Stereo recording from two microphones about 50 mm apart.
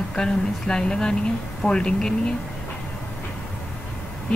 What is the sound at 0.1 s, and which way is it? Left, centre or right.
Speech, centre.